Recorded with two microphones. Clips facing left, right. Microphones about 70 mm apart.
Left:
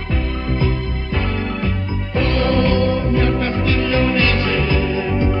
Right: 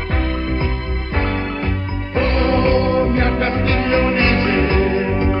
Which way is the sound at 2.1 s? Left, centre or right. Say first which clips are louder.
Right 1 dB; right.